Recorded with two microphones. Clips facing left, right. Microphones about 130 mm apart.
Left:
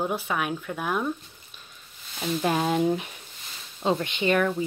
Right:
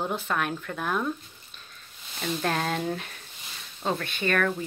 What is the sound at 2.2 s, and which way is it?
Speech, 10° left (ahead or behind).